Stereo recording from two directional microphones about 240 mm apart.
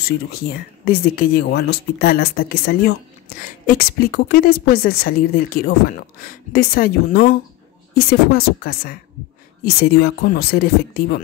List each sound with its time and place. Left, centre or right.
0.0 s speech: left